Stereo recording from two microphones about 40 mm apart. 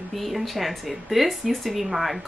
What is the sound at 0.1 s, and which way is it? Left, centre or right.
Speech, centre.